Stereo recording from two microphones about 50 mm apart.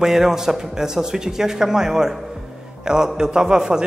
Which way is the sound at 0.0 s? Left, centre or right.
Centre.